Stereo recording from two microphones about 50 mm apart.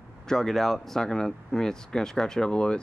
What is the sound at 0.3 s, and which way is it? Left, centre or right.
Speech, centre.